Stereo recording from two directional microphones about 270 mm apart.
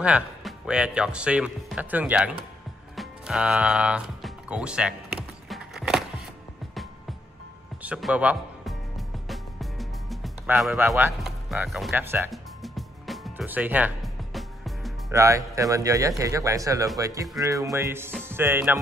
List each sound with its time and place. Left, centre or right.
0.0 s speech: centre
3.0 s music: centre
7.8 s music: centre
15.0 s speech: centre